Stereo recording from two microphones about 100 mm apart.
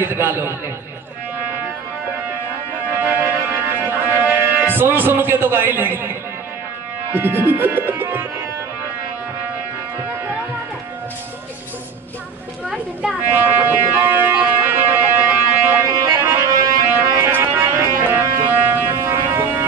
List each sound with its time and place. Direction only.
0.0 s a man's voice: 20° right (ahead or behind)
3.0 s music: 20° right (ahead or behind)
7.1 s speech: 20° right (ahead or behind)
12.6 s a sound: 15° right (ahead or behind); by 16.7 s 30° right (ahead or behind)
16.9 s music: 25° right (ahead or behind)